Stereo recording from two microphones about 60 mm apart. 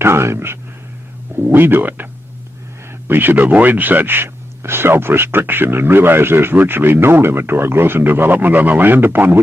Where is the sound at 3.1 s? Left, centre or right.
Right.